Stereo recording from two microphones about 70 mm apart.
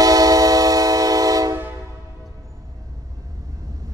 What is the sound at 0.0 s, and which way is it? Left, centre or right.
Train, right.